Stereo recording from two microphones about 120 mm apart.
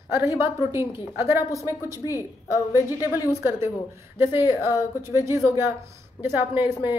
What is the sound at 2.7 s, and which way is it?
Speech, 20° right (ahead or behind).